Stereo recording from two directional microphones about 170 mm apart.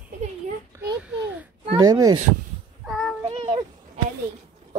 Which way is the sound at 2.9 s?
Centre (ahead or behind).